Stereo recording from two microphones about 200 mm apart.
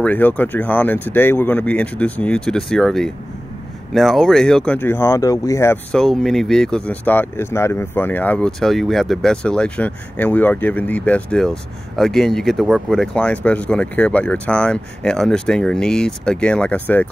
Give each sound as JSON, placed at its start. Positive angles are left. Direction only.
{"t": 0.0, "sound": "speech", "side_deg": 5}